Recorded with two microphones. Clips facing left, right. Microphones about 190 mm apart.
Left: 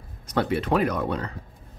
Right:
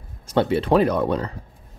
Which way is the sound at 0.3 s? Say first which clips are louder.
Right 5 dB; 25° right (ahead or behind).